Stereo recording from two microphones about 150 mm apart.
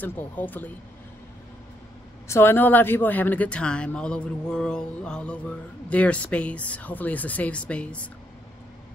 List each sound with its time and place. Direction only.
0.0 s speech: 10° left (ahead or behind)
2.2 s speech: 15° left (ahead or behind)